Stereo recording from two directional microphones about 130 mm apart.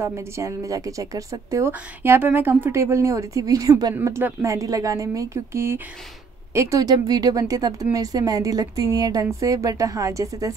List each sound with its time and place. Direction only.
0.0 s speech: 20° right (ahead or behind)